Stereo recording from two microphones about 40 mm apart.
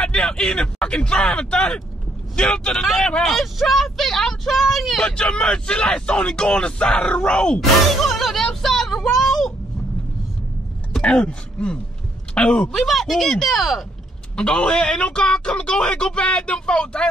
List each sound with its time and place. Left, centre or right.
0.0 s speech: left
2.8 s speech: centre
5.0 s speech: centre
8.0 s speech: centre
8.6 s vehicle: centre
9.1 s a sound: centre
11.0 s throat clearing: left
12.4 s speech: left
12.7 s speech: centre
14.3 s speech: left